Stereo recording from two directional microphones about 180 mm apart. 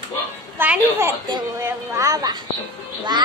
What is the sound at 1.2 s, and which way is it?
Speech, 25° right (ahead or behind).